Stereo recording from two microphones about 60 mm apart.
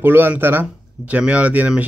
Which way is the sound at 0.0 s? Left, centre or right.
Right.